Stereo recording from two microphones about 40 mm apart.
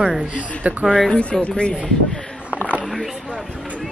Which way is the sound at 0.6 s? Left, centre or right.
Right.